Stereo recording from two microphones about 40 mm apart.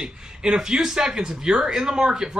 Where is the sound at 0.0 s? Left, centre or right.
Centre.